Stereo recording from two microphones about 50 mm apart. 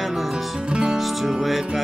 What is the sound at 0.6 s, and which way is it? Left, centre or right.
Music, centre.